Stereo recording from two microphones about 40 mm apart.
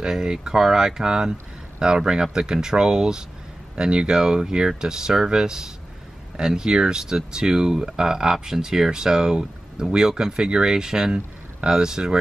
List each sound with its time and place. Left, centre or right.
0.0 s speech: centre